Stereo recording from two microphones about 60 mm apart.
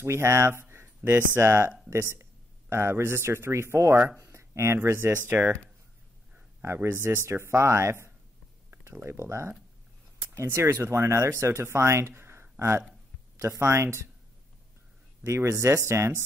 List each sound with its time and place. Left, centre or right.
0.0 s speech: right
1.4 s speech: right
4.2 s a sound: right
4.8 s speech: right
6.6 s speech: right
15.2 s speech: right